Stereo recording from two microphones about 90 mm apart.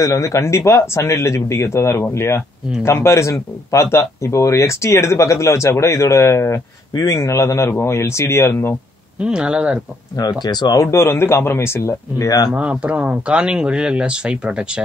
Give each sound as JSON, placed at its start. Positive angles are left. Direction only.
{"t": 0.0, "sound": "speech", "side_deg": 35}
{"t": 6.9, "sound": "speech", "side_deg": 45}
{"t": 7.2, "sound": "speech", "side_deg": 30}
{"t": 9.2, "sound": "speech", "side_deg": -10}
{"t": 10.1, "sound": "speech", "side_deg": 50}
{"t": 10.8, "sound": "speech", "side_deg": 30}
{"t": 12.5, "sound": "speech", "side_deg": -15}